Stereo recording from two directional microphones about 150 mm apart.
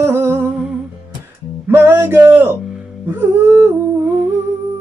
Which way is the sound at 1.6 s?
15° right (ahead or behind).